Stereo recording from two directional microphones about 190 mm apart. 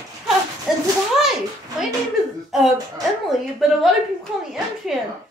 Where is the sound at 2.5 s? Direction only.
Centre (ahead or behind).